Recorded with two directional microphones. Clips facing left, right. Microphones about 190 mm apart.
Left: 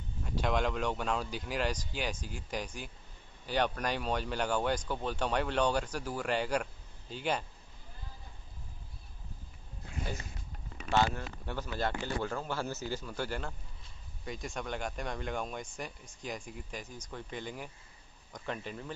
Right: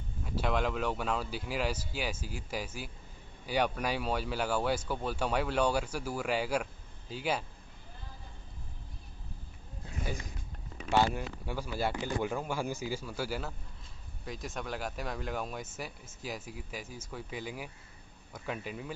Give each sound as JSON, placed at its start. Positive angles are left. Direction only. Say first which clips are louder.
{"t": 0.2, "sound": "speech", "louder": "even", "side_deg": -5}
{"t": 10.9, "sound": "speech", "louder": "right 1 dB", "side_deg": -10}